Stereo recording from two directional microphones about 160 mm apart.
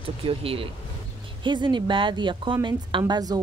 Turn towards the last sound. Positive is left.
turn(degrees=-25)  # may be behind; listen again after turning